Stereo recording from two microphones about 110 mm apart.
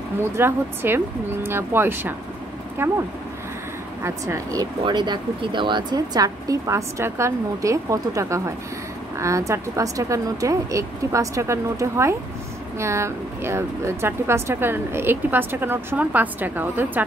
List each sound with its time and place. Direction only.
0.2 s speech: 20° right (ahead or behind)
4.0 s speech: 25° right (ahead or behind)
4.8 s a woman's voice: 45° right (ahead or behind); by 17.0 s 20° right (ahead or behind)